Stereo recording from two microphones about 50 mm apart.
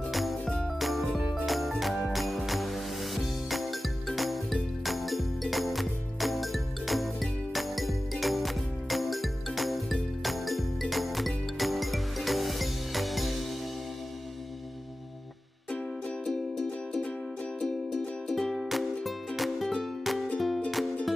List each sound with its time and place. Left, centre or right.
0.1 s music: centre
16.3 s music: centre